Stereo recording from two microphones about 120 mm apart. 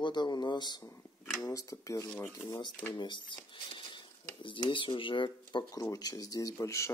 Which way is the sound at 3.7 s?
45° left (ahead or behind).